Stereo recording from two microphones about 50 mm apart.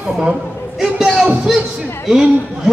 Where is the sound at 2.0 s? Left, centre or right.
Centre.